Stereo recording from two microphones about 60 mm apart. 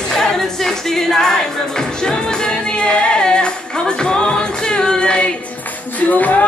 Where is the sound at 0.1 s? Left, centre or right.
Centre.